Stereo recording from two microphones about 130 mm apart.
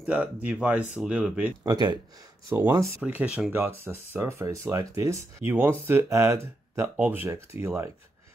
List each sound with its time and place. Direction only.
0.0 s speech: 10° right (ahead or behind)
1.6 s speech: 30° right (ahead or behind)